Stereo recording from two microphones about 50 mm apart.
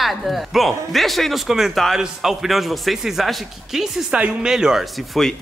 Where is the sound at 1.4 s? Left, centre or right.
Centre.